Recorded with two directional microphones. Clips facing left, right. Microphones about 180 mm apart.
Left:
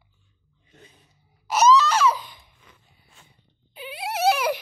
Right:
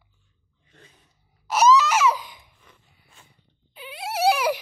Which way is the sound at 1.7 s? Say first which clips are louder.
Even; 10° right (ahead or behind).